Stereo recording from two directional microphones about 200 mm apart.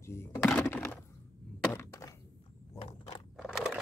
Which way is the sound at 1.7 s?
10° left (ahead or behind).